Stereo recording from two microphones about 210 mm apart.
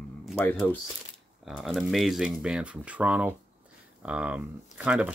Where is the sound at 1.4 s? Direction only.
Centre (ahead or behind).